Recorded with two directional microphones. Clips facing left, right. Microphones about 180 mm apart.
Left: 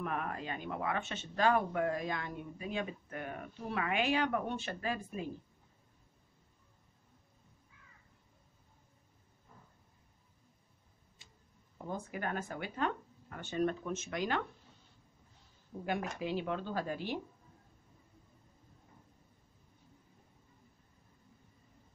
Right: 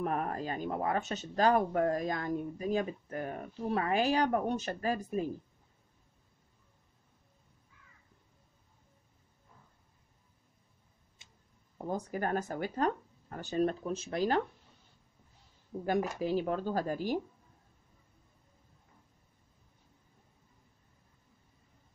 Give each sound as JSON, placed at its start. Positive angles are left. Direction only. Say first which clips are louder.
{"t": 0.0, "sound": "speech", "louder": "right 5 dB", "side_deg": -40}
{"t": 11.9, "sound": "speech", "louder": "right 5 dB", "side_deg": -40}
{"t": 16.2, "sound": "speech", "louder": "right 5 dB", "side_deg": -40}